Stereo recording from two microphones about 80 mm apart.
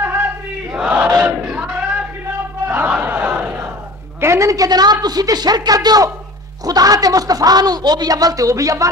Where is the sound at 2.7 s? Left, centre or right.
Right.